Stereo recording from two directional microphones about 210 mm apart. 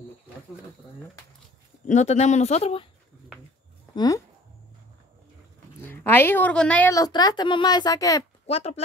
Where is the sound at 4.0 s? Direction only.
15° left (ahead or behind).